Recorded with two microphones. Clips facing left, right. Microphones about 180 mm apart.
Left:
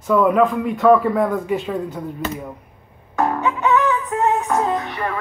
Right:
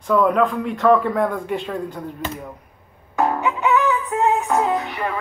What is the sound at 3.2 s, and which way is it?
Music, 15° right (ahead or behind).